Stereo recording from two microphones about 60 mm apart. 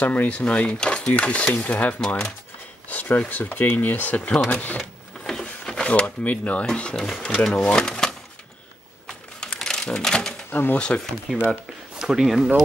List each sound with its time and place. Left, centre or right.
0.0 s speech: left
2.9 s speech: left
5.2 s drawer open or close: centre
6.7 s speech: centre
7.8 s speech: centre
9.0 s a sound: centre
9.8 s speech: centre
10.5 s speech: left
10.8 s speech: centre
12.0 s speech: centre